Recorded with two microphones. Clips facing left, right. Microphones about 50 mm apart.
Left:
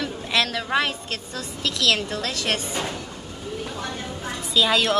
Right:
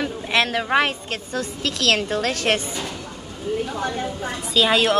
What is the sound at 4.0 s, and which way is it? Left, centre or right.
A woman's voice, right.